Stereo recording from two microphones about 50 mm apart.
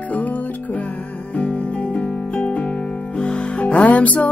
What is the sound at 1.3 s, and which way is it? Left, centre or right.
Music, left.